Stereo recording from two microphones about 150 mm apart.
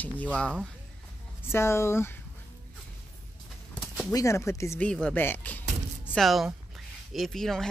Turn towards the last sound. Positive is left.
turn(degrees=5)  # may be behind; listen again after turning